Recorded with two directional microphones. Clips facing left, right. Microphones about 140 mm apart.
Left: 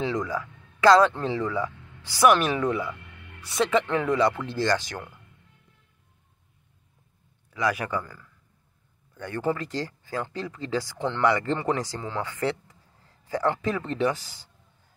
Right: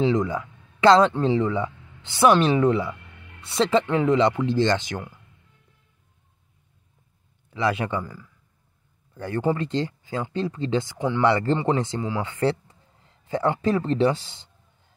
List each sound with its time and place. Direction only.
0.0 s speech: 25° right (ahead or behind)
7.5 s speech: 25° right (ahead or behind)
9.1 s speech: 30° right (ahead or behind)
11.0 s speech: 5° right (ahead or behind)
11.2 s speech: 30° right (ahead or behind)